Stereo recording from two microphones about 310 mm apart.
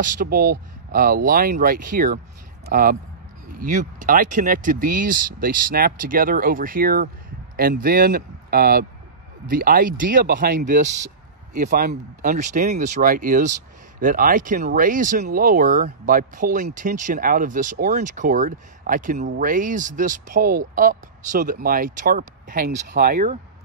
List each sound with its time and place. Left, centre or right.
0.0 s speech: right